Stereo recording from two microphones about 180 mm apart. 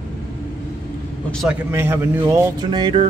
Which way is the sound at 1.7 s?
10° right (ahead or behind).